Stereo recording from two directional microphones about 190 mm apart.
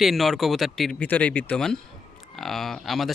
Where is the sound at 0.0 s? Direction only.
Centre (ahead or behind).